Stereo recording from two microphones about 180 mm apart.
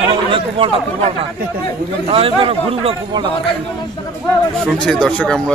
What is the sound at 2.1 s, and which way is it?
A man's voice, 30° right (ahead or behind).